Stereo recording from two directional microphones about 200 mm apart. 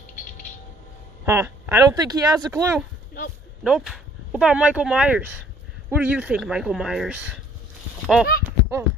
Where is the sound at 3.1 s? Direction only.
50° left (ahead or behind).